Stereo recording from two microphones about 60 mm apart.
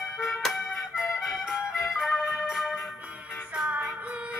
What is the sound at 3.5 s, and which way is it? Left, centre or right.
Music, centre.